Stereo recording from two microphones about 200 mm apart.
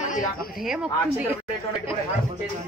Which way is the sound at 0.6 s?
5° right (ahead or behind).